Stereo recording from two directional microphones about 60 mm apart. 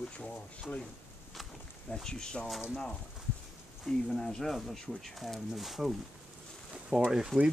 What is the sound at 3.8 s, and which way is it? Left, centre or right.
Speech, centre.